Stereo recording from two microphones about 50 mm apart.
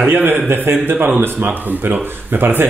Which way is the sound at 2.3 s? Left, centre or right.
Right.